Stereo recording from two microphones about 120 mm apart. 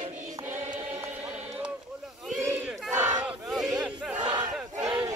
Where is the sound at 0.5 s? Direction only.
15° right (ahead or behind).